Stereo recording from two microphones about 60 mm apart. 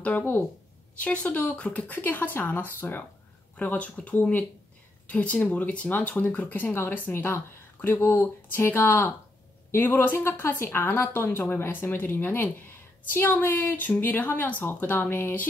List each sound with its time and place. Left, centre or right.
0.9 s a woman's voice: left